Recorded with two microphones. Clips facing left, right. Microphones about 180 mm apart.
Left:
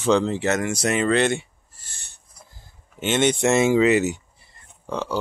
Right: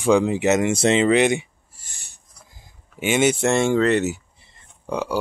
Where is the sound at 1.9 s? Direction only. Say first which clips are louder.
Left 1 dB; 10° right (ahead or behind).